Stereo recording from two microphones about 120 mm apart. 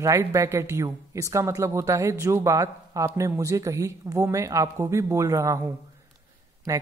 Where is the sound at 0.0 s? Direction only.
25° right (ahead or behind).